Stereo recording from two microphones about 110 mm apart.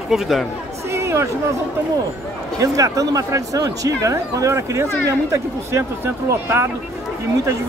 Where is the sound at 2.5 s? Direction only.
30° right (ahead or behind).